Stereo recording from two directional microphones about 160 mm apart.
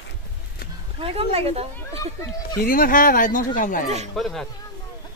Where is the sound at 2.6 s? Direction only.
65° left (ahead or behind).